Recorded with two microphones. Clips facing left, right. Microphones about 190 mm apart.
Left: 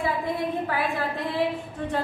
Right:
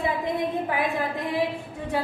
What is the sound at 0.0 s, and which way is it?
A woman's voice, 20° right (ahead or behind).